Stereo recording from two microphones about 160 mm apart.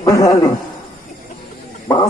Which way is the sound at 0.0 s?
20° left (ahead or behind).